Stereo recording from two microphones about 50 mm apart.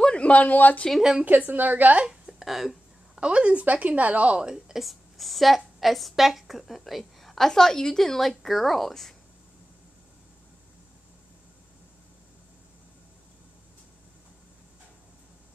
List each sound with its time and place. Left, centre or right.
0.0 s speech: left
1.2 s speech: right
2.0 s a sound: centre
3.2 s a woman's voice: right; by 9.1 s centre